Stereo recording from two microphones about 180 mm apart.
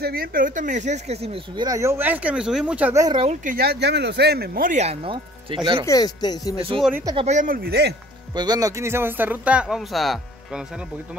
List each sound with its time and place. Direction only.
0.0 s speech: 55° right (ahead or behind); by 1.7 s 35° right (ahead or behind)
1.7 s speech: 15° right (ahead or behind)
3.4 s speech: 60° right (ahead or behind); by 5.6 s 30° right (ahead or behind)
5.9 s speech: 20° left (ahead or behind)
6.5 s speech: 30° right (ahead or behind)
7.2 s speech: 45° right (ahead or behind)
8.4 s speech: 20° right (ahead or behind); by 10.6 s centre (ahead or behind)